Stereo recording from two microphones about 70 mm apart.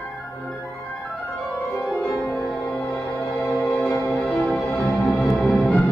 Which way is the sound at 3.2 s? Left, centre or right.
Left.